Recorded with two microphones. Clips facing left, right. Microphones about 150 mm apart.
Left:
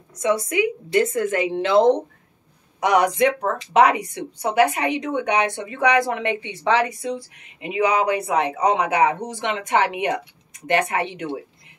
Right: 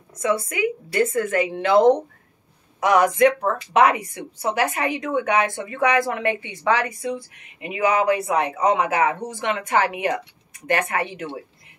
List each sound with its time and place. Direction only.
0.8 s speech: 20° left (ahead or behind)
2.8 s speech: 20° left (ahead or behind)